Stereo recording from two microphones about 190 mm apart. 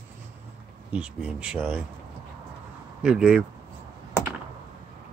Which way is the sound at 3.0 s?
5° right (ahead or behind).